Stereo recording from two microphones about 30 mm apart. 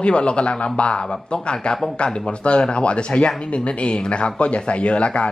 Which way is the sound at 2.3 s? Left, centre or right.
Left.